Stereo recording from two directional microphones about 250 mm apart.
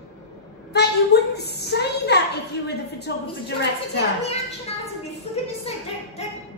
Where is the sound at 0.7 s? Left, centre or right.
Left.